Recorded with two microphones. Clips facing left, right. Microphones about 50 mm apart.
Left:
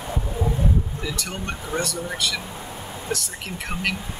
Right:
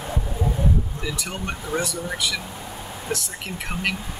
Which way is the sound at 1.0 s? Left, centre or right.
Centre.